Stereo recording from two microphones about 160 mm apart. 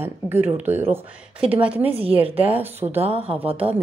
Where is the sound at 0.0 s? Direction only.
15° right (ahead or behind).